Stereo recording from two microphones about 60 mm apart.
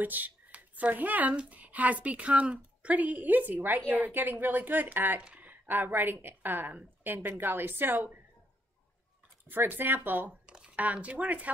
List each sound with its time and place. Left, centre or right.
0.0 s a woman's voice: right
9.5 s speech: right
10.4 s a sound: centre
10.8 s a woman's voice: right